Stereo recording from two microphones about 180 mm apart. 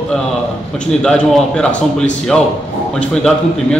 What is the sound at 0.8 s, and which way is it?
A man's voice, 5° left (ahead or behind).